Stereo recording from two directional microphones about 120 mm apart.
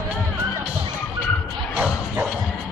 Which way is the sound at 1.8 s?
10° right (ahead or behind).